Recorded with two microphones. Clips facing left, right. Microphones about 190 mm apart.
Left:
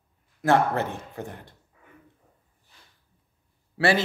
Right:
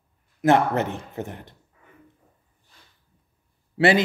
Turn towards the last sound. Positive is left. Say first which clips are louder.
# right 4 dB
turn(degrees=-20)  # may be behind; listen again after turning